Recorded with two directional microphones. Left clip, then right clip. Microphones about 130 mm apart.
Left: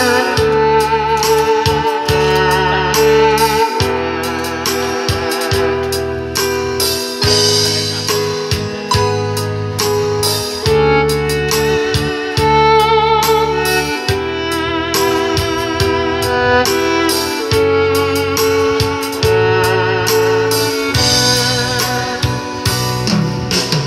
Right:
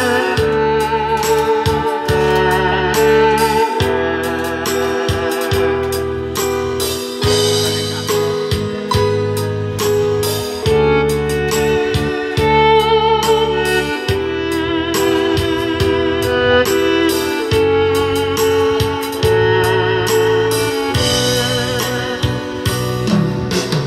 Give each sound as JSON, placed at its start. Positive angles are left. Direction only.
{"t": 0.0, "sound": "music", "side_deg": 30}
{"t": 7.2, "sound": "music", "side_deg": 30}
{"t": 10.7, "sound": "music", "side_deg": 35}
{"t": 15.0, "sound": "music", "side_deg": 25}